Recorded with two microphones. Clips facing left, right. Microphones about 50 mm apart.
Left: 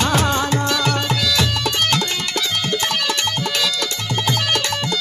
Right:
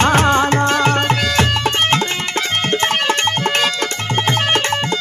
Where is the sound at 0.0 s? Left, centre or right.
Right.